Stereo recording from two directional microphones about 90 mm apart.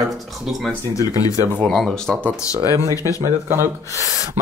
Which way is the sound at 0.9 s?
40° left (ahead or behind).